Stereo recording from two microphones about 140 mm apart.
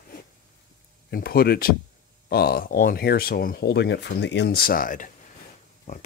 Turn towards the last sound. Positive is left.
turn(degrees=50)  # may be behind; listen again after turning